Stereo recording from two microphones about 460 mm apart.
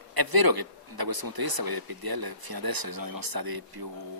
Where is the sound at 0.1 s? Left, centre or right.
Right.